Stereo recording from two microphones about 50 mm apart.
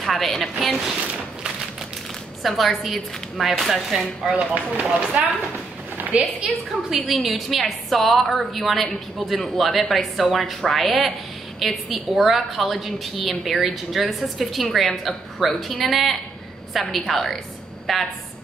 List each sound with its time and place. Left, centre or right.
0.0 s a woman's voice: centre
2.4 s a woman's voice: centre
4.3 s speech: right
6.9 s a woman's voice: centre